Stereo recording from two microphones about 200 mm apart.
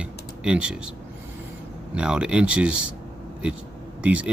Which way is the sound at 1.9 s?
5° right (ahead or behind).